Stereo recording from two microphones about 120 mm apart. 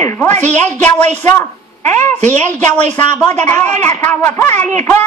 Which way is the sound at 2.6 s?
10° left (ahead or behind).